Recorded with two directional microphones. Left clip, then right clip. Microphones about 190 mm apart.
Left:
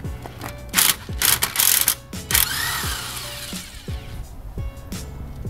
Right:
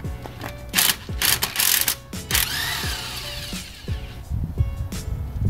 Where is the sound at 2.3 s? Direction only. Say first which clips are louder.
Left 1 dB; 10° left (ahead or behind).